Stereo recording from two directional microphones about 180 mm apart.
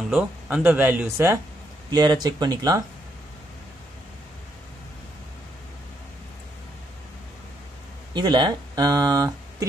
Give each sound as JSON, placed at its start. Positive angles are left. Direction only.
{"t": 0.1, "sound": "speech", "side_deg": -5}
{"t": 8.1, "sound": "speech", "side_deg": -25}